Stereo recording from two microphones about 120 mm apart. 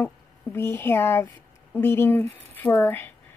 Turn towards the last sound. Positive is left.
turn(degrees=15)  # may be behind; listen again after turning